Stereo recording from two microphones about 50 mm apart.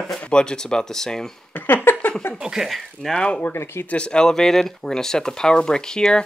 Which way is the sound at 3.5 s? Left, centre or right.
Left.